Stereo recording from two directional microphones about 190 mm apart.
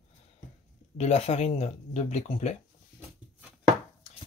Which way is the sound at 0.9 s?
35° left (ahead or behind).